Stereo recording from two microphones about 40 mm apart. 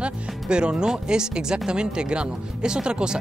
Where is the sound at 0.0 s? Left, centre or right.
Right.